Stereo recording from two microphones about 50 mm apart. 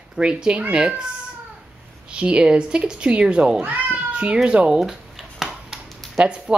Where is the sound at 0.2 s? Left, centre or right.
Centre.